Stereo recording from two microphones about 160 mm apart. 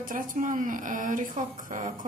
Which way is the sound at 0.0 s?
55° right (ahead or behind).